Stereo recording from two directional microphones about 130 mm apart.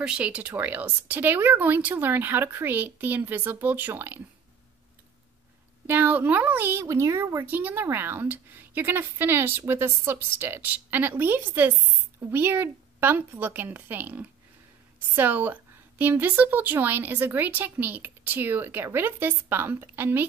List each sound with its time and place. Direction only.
0.0 s a child's voice: 10° right (ahead or behind)
5.9 s a child's voice: 15° right (ahead or behind)